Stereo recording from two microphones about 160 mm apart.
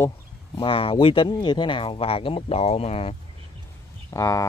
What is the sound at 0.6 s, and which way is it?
Speech, 35° left (ahead or behind).